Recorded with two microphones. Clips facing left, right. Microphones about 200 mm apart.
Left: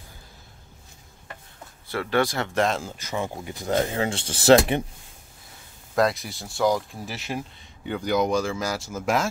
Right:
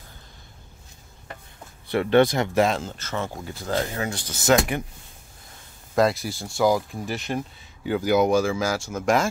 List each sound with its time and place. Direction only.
1.9 s speech: 20° right (ahead or behind)
2.8 s speech: 10° left (ahead or behind); by 4.8 s 30° left (ahead or behind)
5.9 s speech: centre (ahead or behind)